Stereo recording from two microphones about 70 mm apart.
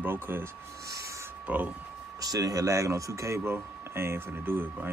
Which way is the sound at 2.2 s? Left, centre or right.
Right.